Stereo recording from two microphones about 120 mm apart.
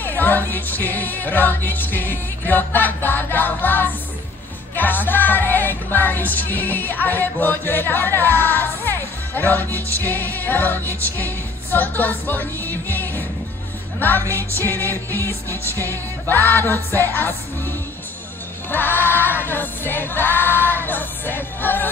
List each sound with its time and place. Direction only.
0.0 s music: 15° left (ahead or behind)
9.8 s music: 25° right (ahead or behind)
10.0 s music: 15° left (ahead or behind)